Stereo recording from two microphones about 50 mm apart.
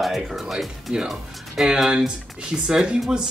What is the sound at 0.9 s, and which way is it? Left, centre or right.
Speech, centre.